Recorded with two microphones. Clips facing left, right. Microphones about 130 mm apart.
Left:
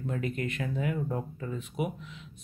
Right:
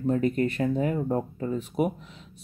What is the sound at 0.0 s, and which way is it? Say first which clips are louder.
Speech: right 9 dB; 35° right (ahead or behind).